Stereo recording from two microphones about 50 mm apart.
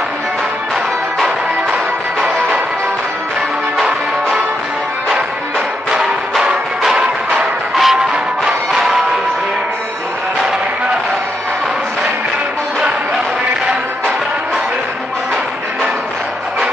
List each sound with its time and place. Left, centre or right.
6.8 s music: centre
7.7 s music: centre